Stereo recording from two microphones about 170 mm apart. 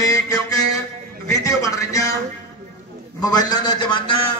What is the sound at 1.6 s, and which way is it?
Speech, 20° left (ahead or behind).